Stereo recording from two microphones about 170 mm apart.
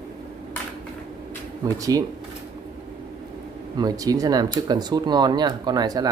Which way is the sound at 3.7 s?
20° right (ahead or behind).